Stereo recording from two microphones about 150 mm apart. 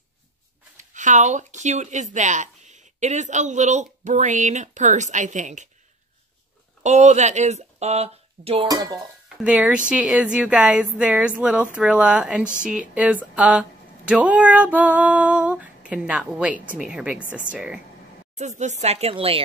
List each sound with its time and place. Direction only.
0.7 s speech: 55° right (ahead or behind)
6.8 s speech: 50° right (ahead or behind)
8.6 s dishes: 25° right (ahead or behind)
9.4 s speech: 10° right (ahead or behind)
18.3 s speech: 50° right (ahead or behind)